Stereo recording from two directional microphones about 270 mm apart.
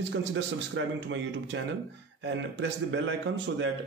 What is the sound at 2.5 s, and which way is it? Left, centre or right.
Speech, right.